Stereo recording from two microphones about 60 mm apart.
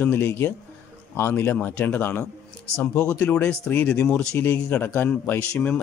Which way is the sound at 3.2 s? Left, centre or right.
Centre.